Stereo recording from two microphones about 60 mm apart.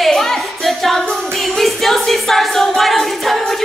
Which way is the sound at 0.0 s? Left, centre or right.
Centre.